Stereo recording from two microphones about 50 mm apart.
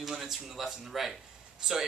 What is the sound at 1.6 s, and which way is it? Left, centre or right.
Speech, centre.